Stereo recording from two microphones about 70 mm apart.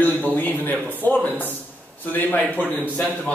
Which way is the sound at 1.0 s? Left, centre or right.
Left.